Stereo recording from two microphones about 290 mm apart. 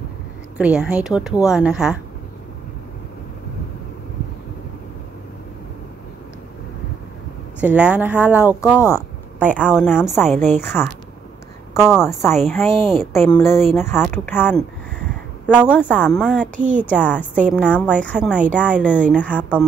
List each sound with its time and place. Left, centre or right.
0.6 s speech: centre
7.6 s speech: centre
9.6 s a woman's voice: centre
16.5 s speech: right
16.8 s speech: centre